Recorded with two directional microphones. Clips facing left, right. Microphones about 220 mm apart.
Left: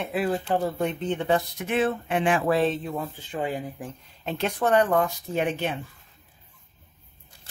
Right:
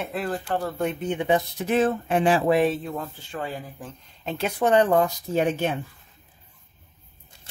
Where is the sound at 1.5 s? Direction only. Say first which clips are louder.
Right 3 dB; 40° right (ahead or behind).